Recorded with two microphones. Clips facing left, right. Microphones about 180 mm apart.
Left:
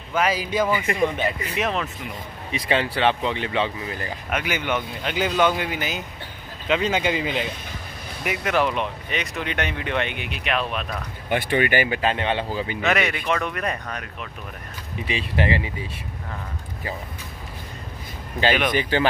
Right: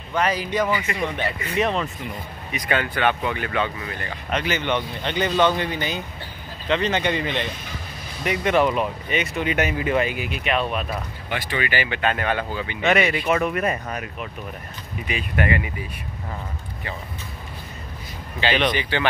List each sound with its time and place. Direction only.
0.1 s speech: 10° left (ahead or behind)
2.5 s speech: 30° left (ahead or behind)
4.3 s speech: 10° left (ahead or behind)
11.2 s speech: 50° left (ahead or behind)
11.9 s speech: 30° left (ahead or behind)
12.8 s speech: centre (ahead or behind)
15.0 s speech: 30° left (ahead or behind)
18.7 s speech: 45° left (ahead or behind)